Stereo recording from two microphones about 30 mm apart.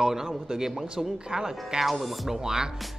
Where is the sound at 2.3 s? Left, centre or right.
Centre.